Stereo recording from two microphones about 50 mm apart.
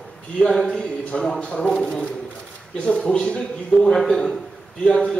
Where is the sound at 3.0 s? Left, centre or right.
Centre.